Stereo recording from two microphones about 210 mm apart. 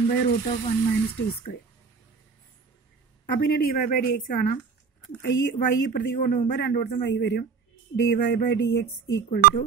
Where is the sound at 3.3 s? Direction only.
45° left (ahead or behind).